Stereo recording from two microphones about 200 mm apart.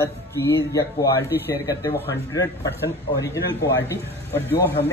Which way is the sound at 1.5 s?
15° left (ahead or behind).